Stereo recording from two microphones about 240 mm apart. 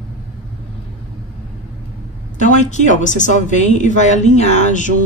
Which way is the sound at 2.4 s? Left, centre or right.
Left.